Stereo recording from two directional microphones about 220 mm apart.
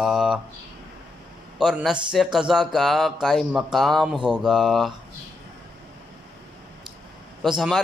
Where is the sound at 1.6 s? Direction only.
Centre (ahead or behind).